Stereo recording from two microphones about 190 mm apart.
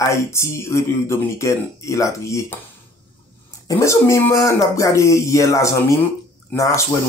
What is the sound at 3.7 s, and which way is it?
Speech, 15° left (ahead or behind).